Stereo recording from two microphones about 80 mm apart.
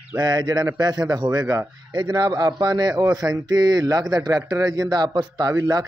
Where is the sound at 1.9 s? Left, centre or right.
Right.